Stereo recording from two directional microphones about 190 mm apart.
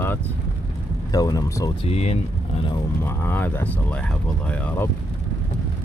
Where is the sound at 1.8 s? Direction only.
35° left (ahead or behind).